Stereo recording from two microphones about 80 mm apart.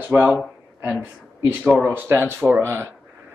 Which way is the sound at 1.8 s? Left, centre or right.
Right.